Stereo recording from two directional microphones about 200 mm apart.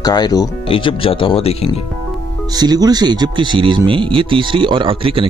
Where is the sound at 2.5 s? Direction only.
20° right (ahead or behind).